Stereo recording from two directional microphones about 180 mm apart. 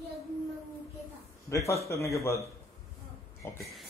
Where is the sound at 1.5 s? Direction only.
15° left (ahead or behind).